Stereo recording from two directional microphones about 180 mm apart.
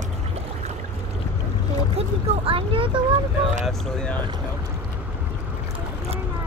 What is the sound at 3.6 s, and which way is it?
Speech, 5° left (ahead or behind).